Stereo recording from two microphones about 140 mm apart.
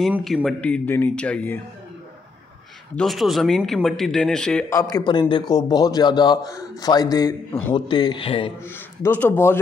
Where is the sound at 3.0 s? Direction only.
Centre (ahead or behind).